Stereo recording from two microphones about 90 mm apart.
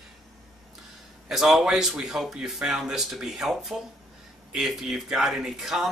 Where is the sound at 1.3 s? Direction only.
5° right (ahead or behind).